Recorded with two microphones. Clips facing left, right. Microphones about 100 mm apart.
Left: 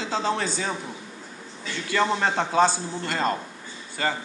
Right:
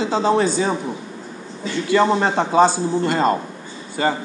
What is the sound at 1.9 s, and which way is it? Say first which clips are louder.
A man's voice: right 7 dB; 20° right (ahead or behind).